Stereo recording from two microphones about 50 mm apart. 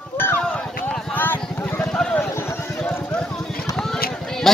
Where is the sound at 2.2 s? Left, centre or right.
Left.